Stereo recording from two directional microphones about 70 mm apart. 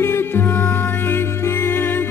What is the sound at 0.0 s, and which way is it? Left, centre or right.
Music, left.